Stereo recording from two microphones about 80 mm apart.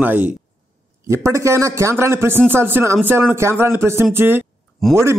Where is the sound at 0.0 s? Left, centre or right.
Right.